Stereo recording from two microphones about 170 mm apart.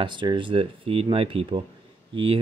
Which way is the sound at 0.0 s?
30° right (ahead or behind).